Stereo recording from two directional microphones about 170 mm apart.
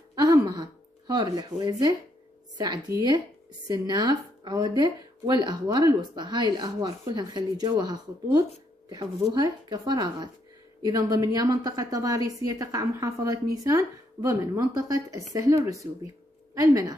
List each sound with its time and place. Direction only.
0.1 s throat clearing: 20° right (ahead or behind)
2.5 s speech: 25° right (ahead or behind)